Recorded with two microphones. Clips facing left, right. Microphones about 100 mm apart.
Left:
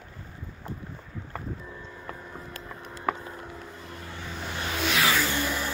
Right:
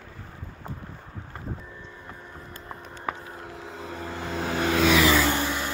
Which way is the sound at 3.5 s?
90° right.